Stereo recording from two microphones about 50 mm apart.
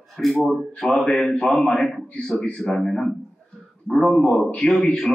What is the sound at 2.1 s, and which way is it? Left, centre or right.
Speech, centre.